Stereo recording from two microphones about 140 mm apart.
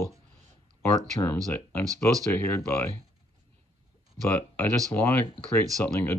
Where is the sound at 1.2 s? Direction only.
25° left (ahead or behind).